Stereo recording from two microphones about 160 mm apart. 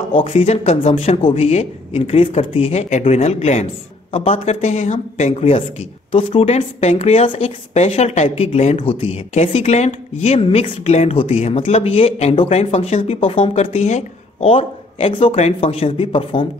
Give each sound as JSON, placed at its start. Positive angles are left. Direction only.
{"t": 0.1, "sound": "speech", "side_deg": 35}